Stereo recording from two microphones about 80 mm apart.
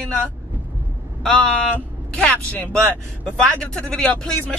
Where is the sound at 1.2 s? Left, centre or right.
Centre.